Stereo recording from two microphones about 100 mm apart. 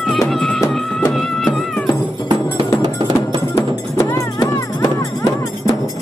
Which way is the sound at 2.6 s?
50° right (ahead or behind).